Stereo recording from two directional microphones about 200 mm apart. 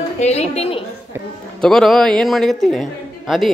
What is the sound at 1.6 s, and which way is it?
A man's voice, centre (ahead or behind).